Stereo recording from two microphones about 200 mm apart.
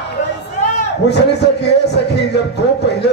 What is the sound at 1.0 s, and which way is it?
Speech, 55° left (ahead or behind).